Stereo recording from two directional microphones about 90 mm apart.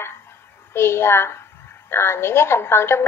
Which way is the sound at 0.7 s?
25° left (ahead or behind).